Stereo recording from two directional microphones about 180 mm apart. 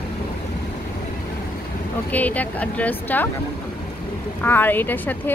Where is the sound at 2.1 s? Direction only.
10° left (ahead or behind).